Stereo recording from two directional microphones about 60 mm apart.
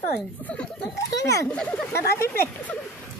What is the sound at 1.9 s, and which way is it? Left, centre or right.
Speech, left.